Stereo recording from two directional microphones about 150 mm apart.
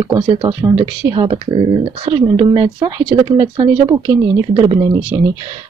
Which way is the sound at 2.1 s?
30° right (ahead or behind).